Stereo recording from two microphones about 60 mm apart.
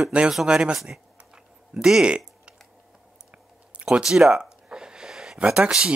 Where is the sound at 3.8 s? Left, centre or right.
Centre.